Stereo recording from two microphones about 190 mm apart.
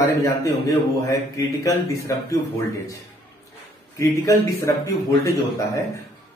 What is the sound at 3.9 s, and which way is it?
Speech, 15° left (ahead or behind).